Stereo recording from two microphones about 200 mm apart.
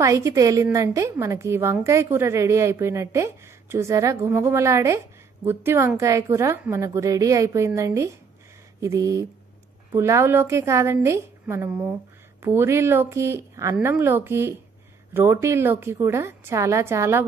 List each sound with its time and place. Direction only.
0.0 s a woman's voice: 15° right (ahead or behind)